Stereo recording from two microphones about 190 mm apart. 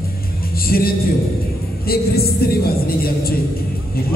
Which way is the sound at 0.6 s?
50° left (ahead or behind).